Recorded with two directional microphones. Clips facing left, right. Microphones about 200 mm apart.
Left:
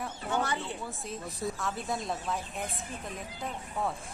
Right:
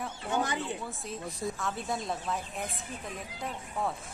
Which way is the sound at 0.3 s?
15° right (ahead or behind).